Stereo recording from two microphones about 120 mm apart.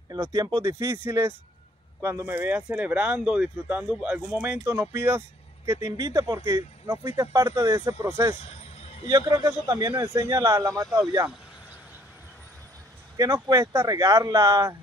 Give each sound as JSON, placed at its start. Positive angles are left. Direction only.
{"t": 0.2, "sound": "speech", "side_deg": -30}
{"t": 5.7, "sound": "speech", "side_deg": -25}
{"t": 8.5, "sound": "a sound", "side_deg": 55}
{"t": 9.1, "sound": "speech", "side_deg": -25}
{"t": 13.2, "sound": "speech", "side_deg": -30}